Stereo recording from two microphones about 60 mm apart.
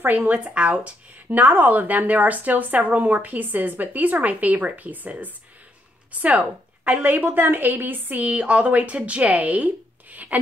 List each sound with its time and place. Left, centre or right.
0.0 s a woman's voice: right